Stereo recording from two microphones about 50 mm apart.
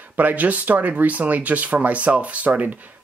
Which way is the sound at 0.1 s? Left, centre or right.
Right.